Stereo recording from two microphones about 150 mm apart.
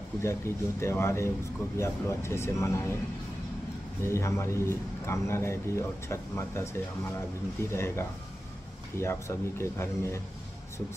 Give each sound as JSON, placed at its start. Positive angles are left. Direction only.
{"t": 0.2, "sound": "a man's voice", "side_deg": 20}
{"t": 4.0, "sound": "a man's voice", "side_deg": 20}
{"t": 7.7, "sound": "a man's voice", "side_deg": 20}